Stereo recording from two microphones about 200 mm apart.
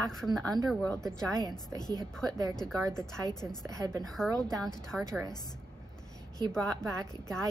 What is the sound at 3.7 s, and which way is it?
Speech, 15° right (ahead or behind).